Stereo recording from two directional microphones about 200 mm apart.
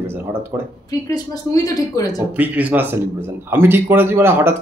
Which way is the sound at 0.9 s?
20° left (ahead or behind).